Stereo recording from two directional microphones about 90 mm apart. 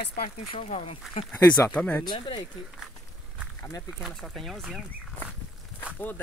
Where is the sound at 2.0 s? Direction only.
55° left (ahead or behind).